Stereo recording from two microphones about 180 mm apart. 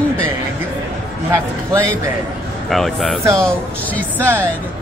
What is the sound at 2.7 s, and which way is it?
A woman's voice, centre (ahead or behind).